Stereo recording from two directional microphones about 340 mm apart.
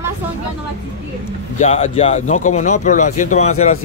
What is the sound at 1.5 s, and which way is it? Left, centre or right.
Speech, centre.